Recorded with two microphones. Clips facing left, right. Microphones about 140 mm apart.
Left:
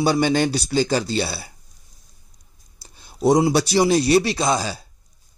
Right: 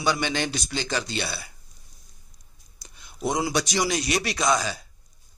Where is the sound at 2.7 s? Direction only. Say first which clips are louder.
Left 6 dB; 30° left (ahead or behind).